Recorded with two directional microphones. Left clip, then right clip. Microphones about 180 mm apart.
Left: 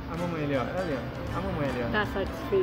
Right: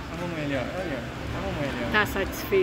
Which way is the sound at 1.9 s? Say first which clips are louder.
Right 9 dB; 20° right (ahead or behind).